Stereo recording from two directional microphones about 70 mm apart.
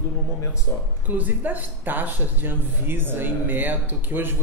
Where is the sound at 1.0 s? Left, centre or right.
Right.